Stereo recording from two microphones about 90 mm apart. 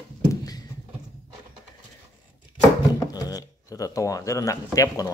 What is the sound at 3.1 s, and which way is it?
Speech, 45° left (ahead or behind).